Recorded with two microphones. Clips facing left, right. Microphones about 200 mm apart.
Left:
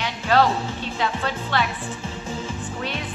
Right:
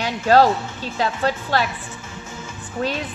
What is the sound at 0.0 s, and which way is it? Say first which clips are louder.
Music: right 4 dB; 40° right (ahead or behind).